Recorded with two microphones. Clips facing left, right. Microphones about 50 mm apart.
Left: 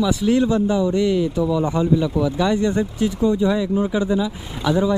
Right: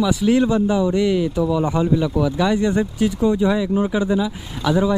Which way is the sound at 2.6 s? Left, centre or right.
Right.